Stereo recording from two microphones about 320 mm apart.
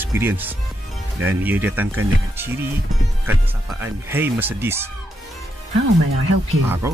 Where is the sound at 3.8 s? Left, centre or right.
Centre.